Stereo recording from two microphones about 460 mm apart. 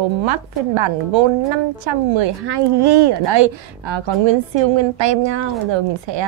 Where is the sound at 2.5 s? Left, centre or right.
Right.